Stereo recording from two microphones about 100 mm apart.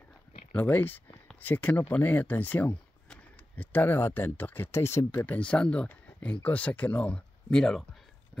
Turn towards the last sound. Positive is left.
turn(degrees=5)  # may be behind; listen again after turning